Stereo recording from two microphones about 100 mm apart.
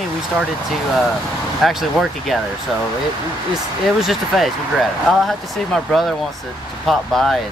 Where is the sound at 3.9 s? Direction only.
Centre (ahead or behind).